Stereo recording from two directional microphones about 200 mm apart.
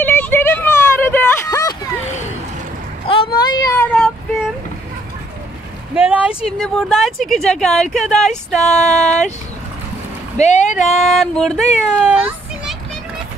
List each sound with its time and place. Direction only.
0.0 s a sound: 10° left (ahead or behind)
3.1 s a sound: 25° left (ahead or behind)
3.8 s child singing: 5° left (ahead or behind)
6.0 s speech: 5° right (ahead or behind)
10.4 s speech: 35° left (ahead or behind)
11.0 s speech: centre (ahead or behind)